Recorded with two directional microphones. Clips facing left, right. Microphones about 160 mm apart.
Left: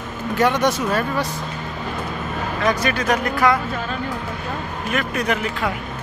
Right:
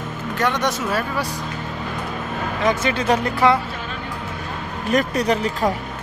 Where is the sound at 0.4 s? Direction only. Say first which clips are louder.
Left 3 dB; 5° left (ahead or behind).